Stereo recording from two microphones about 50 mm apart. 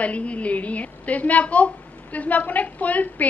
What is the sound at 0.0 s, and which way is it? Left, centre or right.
A woman's voice, left.